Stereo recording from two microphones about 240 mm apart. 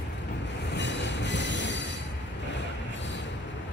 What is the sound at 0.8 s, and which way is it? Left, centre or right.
Train, left.